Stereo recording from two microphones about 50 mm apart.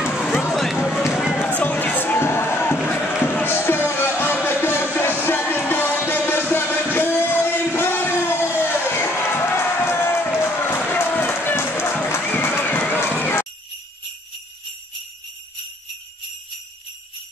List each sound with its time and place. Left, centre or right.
0.5 s music: centre
0.8 s run: centre
1.3 s music: left
2.1 s music: left
7.7 s crowd: left
10.4 s a sound: left
10.9 s run: left
13.2 s jingle bell: left